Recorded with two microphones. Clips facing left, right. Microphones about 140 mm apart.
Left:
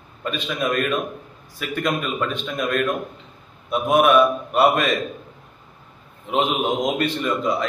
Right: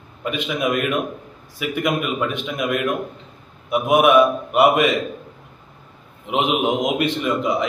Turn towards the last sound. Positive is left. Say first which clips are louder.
# right 2 dB
turn(degrees=-15)  # may be behind; listen again after turning